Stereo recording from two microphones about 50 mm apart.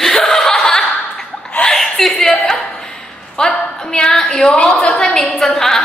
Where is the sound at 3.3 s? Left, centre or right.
Centre.